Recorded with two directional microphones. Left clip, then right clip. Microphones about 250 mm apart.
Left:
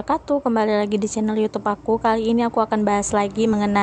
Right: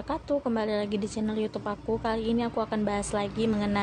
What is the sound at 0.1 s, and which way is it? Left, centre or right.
A woman's voice, centre.